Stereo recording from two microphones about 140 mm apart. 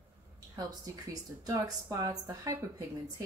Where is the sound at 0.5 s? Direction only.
25° right (ahead or behind).